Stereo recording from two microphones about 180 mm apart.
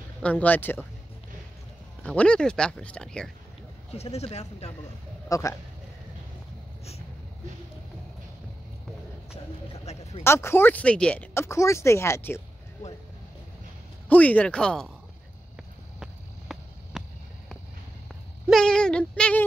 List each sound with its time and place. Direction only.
0.2 s speech: 10° left (ahead or behind)
2.0 s speech: 5° left (ahead or behind)
3.9 s speech: 35° left (ahead or behind)
5.3 s speech: 20° left (ahead or behind)
9.9 s a sound: 35° left (ahead or behind)
10.2 s speech: 15° left (ahead or behind)
14.0 s speech: 10° left (ahead or behind)
16.0 s a sound: 5° right (ahead or behind)
18.5 s a sound: 5° left (ahead or behind)